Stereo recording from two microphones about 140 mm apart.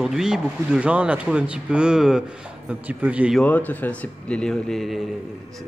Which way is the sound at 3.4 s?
10° left (ahead or behind).